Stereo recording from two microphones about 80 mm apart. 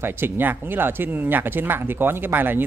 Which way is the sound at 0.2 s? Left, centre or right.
Right.